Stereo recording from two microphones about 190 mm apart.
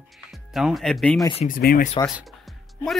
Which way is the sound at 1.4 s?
50° left (ahead or behind).